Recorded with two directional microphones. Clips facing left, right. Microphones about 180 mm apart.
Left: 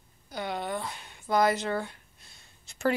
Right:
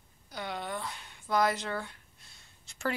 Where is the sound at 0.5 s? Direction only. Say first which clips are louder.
Left 4 dB; 25° left (ahead or behind).